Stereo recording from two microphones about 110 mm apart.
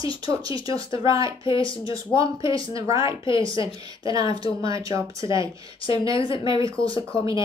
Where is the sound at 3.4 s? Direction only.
50° left (ahead or behind).